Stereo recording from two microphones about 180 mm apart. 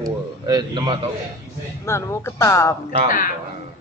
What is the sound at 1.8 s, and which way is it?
Speech, 15° left (ahead or behind).